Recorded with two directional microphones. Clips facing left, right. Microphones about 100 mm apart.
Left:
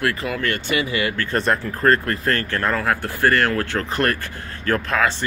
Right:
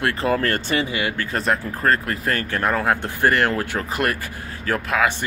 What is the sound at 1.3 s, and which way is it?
Speech, centre (ahead or behind).